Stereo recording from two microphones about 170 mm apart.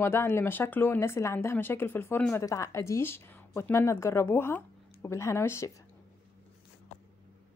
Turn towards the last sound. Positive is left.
turn(degrees=15)  # may be behind; listen again after turning